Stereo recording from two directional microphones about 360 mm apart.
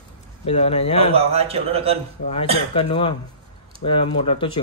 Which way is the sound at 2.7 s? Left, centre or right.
Centre.